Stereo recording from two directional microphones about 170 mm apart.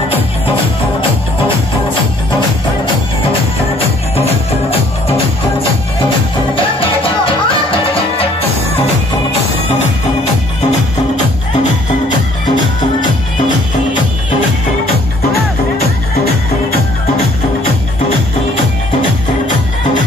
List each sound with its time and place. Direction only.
4.6 s music: 35° left (ahead or behind)